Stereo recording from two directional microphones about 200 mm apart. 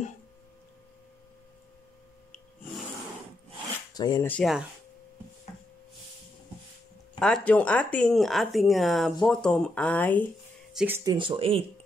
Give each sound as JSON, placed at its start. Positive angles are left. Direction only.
{"t": 3.9, "sound": "speech", "side_deg": 20}
{"t": 4.3, "sound": "speech", "side_deg": 0}
{"t": 7.2, "sound": "speech", "side_deg": 5}
{"t": 10.7, "sound": "a sound", "side_deg": -5}
{"t": 11.1, "sound": "speech", "side_deg": -25}